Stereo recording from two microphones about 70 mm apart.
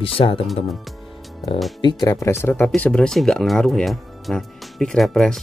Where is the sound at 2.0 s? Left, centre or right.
Left.